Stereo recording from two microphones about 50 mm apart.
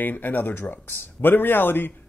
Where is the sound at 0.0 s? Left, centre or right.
Left.